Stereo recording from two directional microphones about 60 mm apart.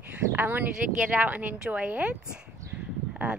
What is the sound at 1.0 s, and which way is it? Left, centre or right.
Speech, centre.